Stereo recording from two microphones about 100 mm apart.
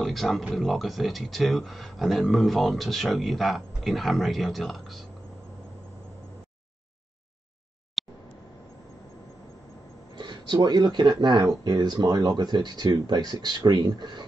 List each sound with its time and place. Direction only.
0.0 s speech: centre (ahead or behind)
8.0 s a sound: centre (ahead or behind)
10.1 s speech: 50° right (ahead or behind)